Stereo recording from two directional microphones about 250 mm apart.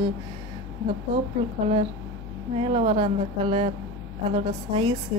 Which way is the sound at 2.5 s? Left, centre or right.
Right.